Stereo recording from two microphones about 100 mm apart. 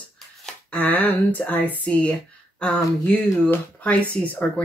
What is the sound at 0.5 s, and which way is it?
Speech, 15° left (ahead or behind).